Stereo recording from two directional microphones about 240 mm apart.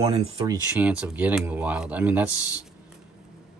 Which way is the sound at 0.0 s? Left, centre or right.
Right.